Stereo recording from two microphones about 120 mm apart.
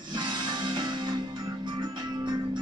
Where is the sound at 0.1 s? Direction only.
40° right (ahead or behind).